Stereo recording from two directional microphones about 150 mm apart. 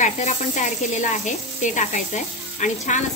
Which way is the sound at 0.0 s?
55° left (ahead or behind).